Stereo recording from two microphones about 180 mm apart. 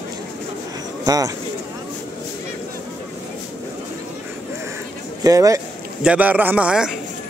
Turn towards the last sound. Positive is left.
turn(degrees=-5)  # may be behind; listen again after turning